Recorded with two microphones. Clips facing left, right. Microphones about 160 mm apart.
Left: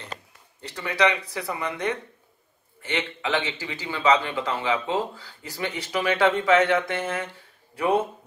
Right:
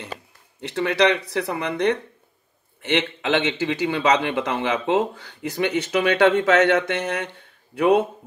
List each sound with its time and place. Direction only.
0.6 s a man's voice: 70° right (ahead or behind)